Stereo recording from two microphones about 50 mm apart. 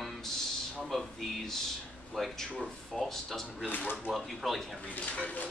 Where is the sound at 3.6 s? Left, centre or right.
Left.